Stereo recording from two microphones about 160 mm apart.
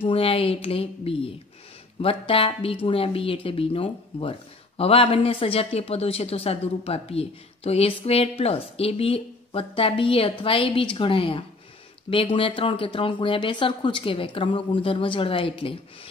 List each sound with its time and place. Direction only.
0.0 s speech: 35° left (ahead or behind)